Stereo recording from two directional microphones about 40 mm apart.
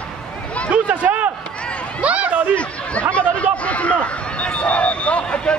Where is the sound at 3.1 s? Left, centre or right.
Left.